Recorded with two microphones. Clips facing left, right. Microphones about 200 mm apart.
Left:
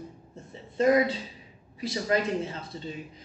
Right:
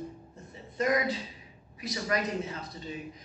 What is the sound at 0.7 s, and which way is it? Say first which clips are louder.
A woman's voice: left 6 dB; 30° left (ahead or behind).